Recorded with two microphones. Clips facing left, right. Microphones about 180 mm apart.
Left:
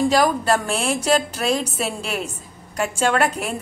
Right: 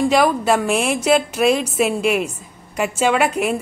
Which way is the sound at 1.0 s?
10° right (ahead or behind).